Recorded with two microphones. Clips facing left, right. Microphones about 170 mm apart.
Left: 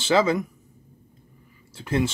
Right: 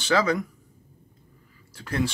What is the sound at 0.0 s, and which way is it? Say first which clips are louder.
Speech: left 3 dB; 25° left (ahead or behind).